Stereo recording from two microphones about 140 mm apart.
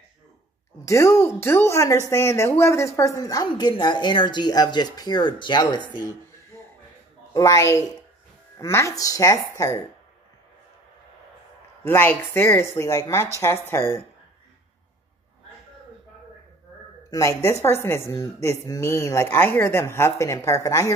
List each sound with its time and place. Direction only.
0.8 s a woman's voice: 20° left (ahead or behind)
7.3 s a woman's voice: 25° left (ahead or behind)
11.8 s a woman's voice: 15° left (ahead or behind)
17.1 s a woman's voice: 20° left (ahead or behind)